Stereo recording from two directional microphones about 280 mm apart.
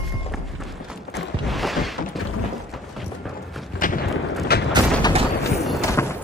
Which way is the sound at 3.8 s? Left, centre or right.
Left.